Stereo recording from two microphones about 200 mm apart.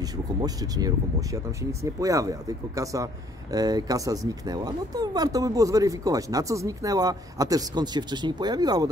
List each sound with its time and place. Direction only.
0.4 s speech: 20° right (ahead or behind)